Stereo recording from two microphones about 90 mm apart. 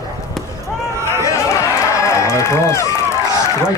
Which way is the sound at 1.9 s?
35° left (ahead or behind).